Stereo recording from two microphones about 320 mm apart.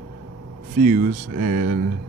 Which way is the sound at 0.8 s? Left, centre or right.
Right.